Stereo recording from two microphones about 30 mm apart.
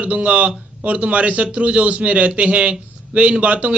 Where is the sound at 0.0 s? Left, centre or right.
Right.